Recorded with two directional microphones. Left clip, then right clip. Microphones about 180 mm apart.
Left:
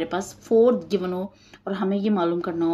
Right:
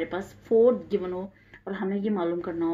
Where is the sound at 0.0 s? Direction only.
25° left (ahead or behind).